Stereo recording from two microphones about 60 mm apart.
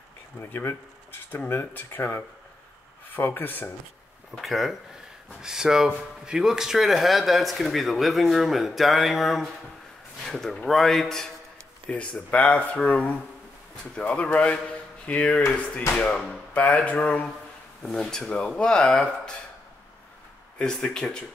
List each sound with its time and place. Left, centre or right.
0.4 s speech: left
4.4 s speech: centre
11.9 s speech: left
17.8 s speech: centre
20.5 s speech: centre